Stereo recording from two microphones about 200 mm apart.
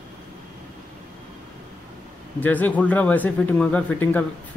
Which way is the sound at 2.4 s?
10° left (ahead or behind).